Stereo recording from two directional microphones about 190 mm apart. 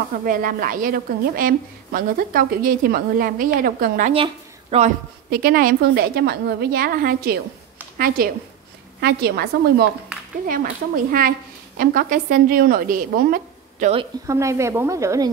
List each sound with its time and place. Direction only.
0.1 s a woman's voice: 50° right (ahead or behind)
4.1 s speech: 30° right (ahead or behind)
5.3 s a woman's voice: 50° right (ahead or behind)
14.2 s a woman's voice: 15° right (ahead or behind)